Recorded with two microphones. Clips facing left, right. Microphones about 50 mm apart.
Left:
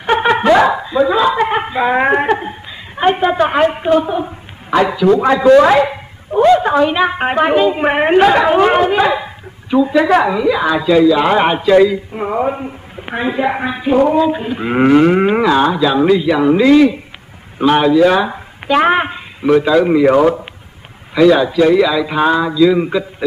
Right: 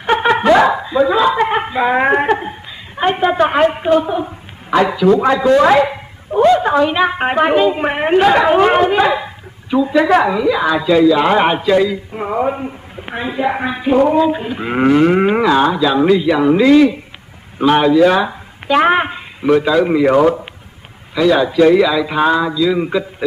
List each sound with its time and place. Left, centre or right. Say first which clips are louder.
0.0 s a woman's voice: even; centre
5.6 s a sound: left 1 dB; centre
6.5 s a woman's voice: left 1 dB; centre
7.9 s a woman's voice: left 5 dB; left
8.3 s speech: even; centre
9.7 s speech: left 2 dB; centre
9.9 s speech: right 1 dB; centre
11.7 s speech: left 4 dB; centre
13.0 s a woman's voice: left 2 dB; left
13.6 s speech: right 1 dB; centre
14.8 s cattle: left 2 dB; centre
15.0 s speech: left 1 dB; centre